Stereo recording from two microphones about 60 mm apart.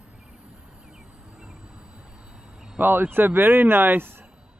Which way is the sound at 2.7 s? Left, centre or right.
Right.